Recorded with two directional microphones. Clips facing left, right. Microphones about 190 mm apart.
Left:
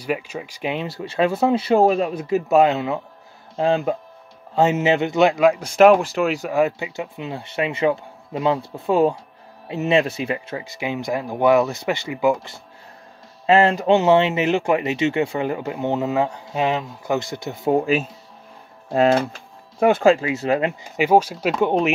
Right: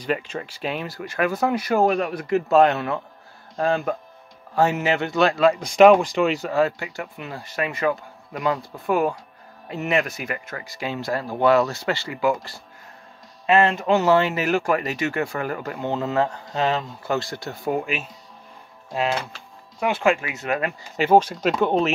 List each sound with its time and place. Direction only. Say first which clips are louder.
0.0 s speech: even; 10° left (ahead or behind); by 2.1 s 25° left (ahead or behind)
2.3 s speech: left 1 dB; 15° left (ahead or behind)
5.8 s speech: even; 5° left (ahead or behind); by 10.5 s 30° left (ahead or behind)
10.6 s speech: left 3 dB; 20° left (ahead or behind)
13.7 s speech: left 4 dB; 35° left (ahead or behind)
13.9 s speech: left 2 dB; 20° left (ahead or behind)
18.9 s speech: left 8 dB; 50° left (ahead or behind)
20.1 s speech: left 5 dB; 30° left (ahead or behind)
20.9 s speech: even; 10° left (ahead or behind)